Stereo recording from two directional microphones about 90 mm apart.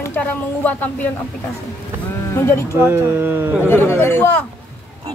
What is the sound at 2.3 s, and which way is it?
Speech, 30° left (ahead or behind).